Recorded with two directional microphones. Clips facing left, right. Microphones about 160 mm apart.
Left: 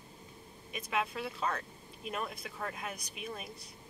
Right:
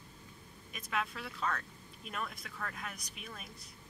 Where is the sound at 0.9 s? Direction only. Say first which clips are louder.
Left 3 dB; 20° left (ahead or behind).